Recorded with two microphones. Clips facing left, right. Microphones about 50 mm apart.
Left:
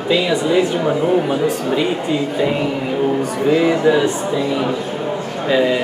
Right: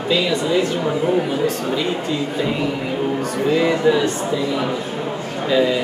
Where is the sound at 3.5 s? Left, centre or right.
Centre.